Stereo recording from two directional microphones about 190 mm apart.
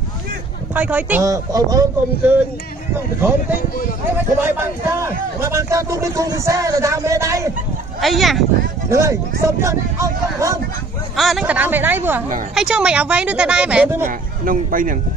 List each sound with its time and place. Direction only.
0.7 s speech: 10° right (ahead or behind)
4.4 s speech: 10° right (ahead or behind)
8.0 s speech: centre (ahead or behind)
9.4 s speech: 15° right (ahead or behind)
11.1 s speech: centre (ahead or behind)
14.0 s speech: 45° right (ahead or behind)